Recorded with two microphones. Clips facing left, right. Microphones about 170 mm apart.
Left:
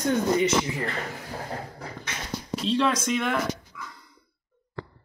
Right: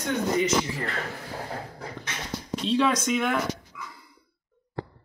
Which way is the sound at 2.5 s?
Centre (ahead or behind).